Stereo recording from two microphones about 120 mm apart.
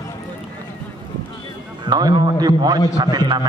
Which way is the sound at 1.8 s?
35° right (ahead or behind).